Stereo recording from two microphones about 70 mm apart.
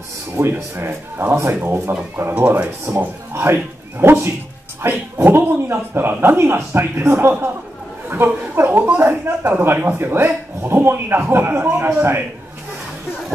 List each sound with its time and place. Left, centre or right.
0.4 s speech: right
2.3 s speech: centre
3.0 s speech: right